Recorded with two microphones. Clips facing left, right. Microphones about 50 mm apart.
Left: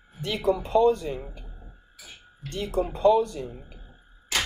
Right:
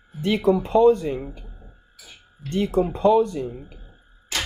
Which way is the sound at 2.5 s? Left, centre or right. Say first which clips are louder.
Right 6 dB; right.